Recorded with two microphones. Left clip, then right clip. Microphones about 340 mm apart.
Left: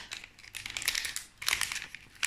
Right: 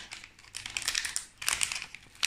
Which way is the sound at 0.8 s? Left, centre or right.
Centre.